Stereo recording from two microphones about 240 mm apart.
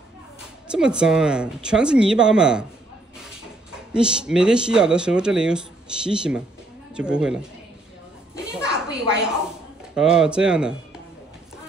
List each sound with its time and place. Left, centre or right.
0.7 s speech: centre
3.9 s speech: centre
8.8 s a sound: right
9.9 s speech: centre